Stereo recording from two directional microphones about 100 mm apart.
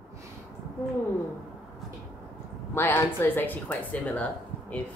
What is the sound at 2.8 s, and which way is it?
A woman's voice, 20° left (ahead or behind).